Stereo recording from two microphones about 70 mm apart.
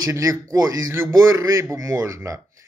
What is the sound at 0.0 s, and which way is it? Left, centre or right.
Speech, right.